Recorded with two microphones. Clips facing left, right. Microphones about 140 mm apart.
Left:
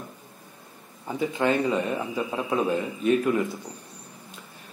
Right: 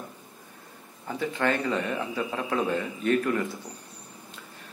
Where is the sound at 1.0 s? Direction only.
15° left (ahead or behind).